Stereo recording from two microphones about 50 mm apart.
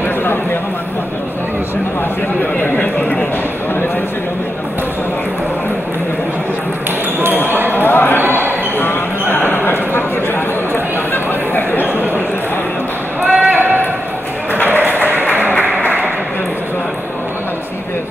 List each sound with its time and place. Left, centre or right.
2.6 s a sound: left
7.2 s basketball bounce: right
7.7 s basketball bounce: left
8.2 s basketball bounce: right
8.7 s basketball bounce: left
11.5 s chatter: left
13.2 s a sound: centre
14.7 s a sound: right
15.7 s applause: left